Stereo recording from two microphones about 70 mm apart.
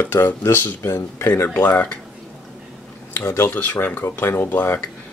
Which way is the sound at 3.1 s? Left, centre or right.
Left.